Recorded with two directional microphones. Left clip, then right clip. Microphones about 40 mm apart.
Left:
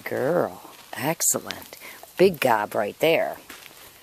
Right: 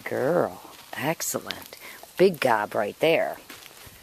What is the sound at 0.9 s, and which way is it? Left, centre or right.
Speech, left.